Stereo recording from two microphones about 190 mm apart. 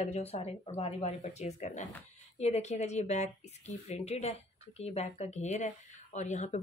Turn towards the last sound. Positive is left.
turn(degrees=35)  # may be behind; listen again after turning